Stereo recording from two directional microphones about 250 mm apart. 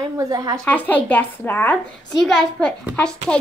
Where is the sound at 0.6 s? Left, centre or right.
Centre.